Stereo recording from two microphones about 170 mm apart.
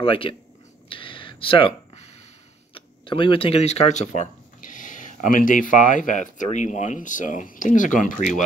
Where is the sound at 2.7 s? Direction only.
30° left (ahead or behind); by 8.3 s 50° left (ahead or behind).